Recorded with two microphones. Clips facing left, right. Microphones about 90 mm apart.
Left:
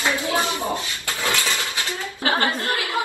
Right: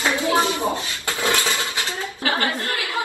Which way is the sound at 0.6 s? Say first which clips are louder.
Right 2 dB; 20° right (ahead or behind).